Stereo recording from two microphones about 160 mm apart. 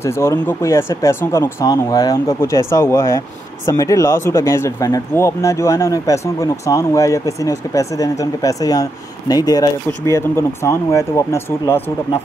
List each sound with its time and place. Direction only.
0.0 s speech: 15° left (ahead or behind)